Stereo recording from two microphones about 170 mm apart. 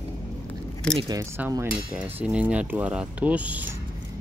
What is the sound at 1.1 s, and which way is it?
Speech, 20° right (ahead or behind).